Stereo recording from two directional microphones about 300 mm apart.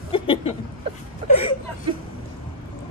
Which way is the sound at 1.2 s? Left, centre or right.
Centre.